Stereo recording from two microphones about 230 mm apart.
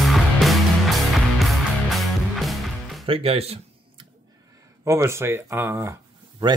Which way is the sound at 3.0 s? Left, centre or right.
Right.